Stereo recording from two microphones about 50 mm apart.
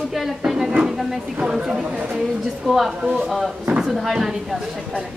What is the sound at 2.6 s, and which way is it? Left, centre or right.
Speech, centre.